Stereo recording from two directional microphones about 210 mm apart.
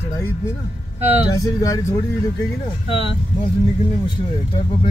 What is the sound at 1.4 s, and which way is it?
Speech, 15° left (ahead or behind).